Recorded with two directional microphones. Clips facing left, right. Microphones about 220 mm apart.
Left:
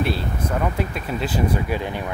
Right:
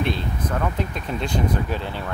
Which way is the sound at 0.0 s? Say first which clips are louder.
Left 1 dB; 10° left (ahead or behind).